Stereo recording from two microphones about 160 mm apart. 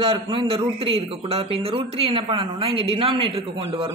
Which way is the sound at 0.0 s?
30° right (ahead or behind).